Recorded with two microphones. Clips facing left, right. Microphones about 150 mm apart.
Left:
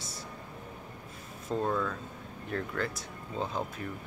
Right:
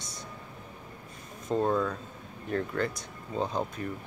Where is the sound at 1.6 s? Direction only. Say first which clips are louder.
Right 4 dB; 15° right (ahead or behind).